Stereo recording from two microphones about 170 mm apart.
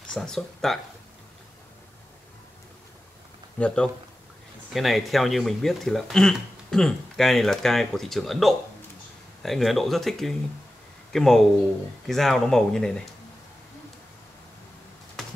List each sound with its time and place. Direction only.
0.1 s speech: 5° left (ahead or behind)
3.5 s speech: 5° left (ahead or behind)
15.2 s a sound: centre (ahead or behind)